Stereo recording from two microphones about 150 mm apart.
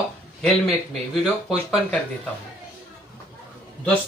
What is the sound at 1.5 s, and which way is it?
Speech, 5° left (ahead or behind).